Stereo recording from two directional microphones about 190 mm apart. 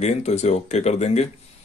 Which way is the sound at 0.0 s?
35° left (ahead or behind).